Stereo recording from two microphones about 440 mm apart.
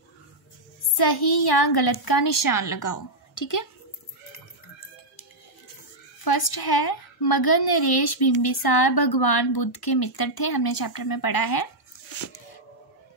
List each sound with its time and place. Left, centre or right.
0.9 s a child's voice: left
6.2 s a woman's voice: left